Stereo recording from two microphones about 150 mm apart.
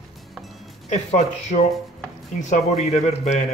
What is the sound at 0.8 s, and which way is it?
Speech, 50° left (ahead or behind).